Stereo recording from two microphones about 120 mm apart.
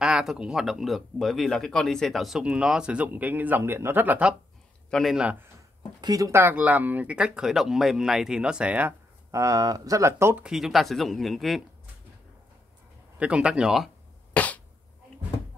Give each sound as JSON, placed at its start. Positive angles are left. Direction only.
{"t": 0.0, "sound": "speech", "side_deg": -5}
{"t": 4.9, "sound": "speech", "side_deg": 0}
{"t": 5.2, "sound": "speech", "side_deg": -15}
{"t": 5.9, "sound": "speech", "side_deg": -30}
{"t": 9.3, "sound": "speech", "side_deg": -25}
{"t": 10.4, "sound": "speech", "side_deg": 0}
{"t": 13.2, "sound": "speech", "side_deg": -10}
{"t": 14.3, "sound": "a sound", "side_deg": 10}